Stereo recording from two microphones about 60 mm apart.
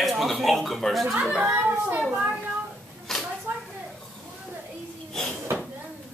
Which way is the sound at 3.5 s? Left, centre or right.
Right.